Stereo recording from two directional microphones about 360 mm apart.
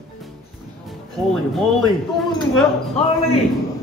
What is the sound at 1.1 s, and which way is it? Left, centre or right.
Speech, centre.